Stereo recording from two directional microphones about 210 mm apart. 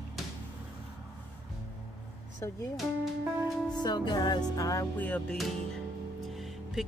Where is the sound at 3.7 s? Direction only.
20° left (ahead or behind).